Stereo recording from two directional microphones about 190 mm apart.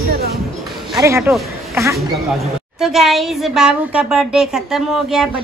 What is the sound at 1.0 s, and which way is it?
Speech, 15° right (ahead or behind).